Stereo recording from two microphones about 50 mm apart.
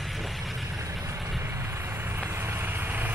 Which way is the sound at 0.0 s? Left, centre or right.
Centre.